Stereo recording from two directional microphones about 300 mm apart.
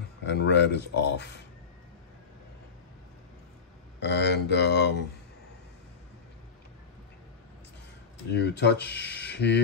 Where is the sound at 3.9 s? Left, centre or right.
Left.